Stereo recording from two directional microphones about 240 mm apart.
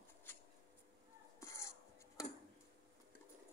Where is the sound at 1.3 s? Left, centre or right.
Centre.